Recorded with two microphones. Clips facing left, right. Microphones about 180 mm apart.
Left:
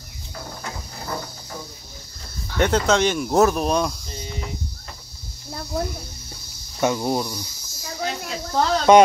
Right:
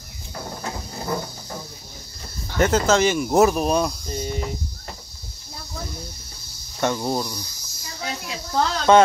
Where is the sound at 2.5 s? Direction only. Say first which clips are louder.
Right 1 dB; centre (ahead or behind).